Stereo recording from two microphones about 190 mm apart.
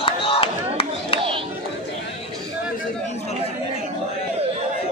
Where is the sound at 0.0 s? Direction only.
30° left (ahead or behind).